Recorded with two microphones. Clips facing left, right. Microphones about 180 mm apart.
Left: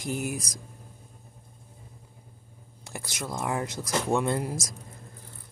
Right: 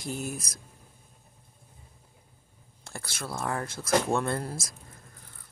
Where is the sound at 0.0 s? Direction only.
15° left (ahead or behind).